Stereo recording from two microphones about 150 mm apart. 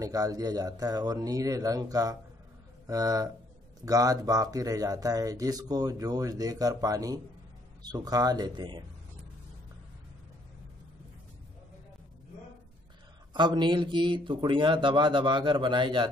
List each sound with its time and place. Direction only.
0.0 s speech: 25° right (ahead or behind)
13.3 s speech: 30° right (ahead or behind)